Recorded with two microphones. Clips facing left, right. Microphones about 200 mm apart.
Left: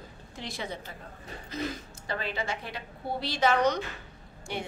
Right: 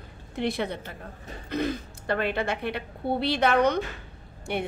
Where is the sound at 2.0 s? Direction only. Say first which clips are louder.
Right 7 dB; 60° right (ahead or behind).